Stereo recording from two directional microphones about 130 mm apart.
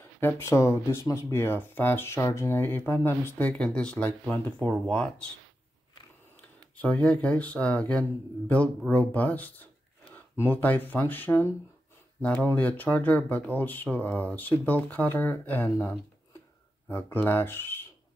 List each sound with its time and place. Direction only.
0.2 s speech: 15° left (ahead or behind)
6.8 s speech: 10° left (ahead or behind)